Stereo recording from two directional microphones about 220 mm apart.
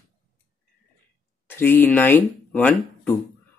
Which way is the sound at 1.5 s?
10° left (ahead or behind).